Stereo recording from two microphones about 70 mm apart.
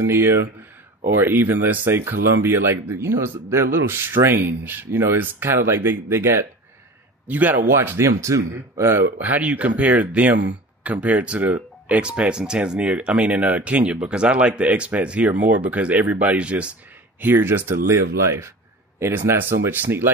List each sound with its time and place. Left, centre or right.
0.0 s speech: right
7.2 s speech: right
7.7 s speech: right
9.2 s speech: right
17.2 s speech: right
19.3 s speech: right